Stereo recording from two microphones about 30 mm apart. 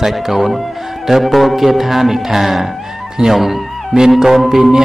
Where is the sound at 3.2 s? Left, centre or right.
Right.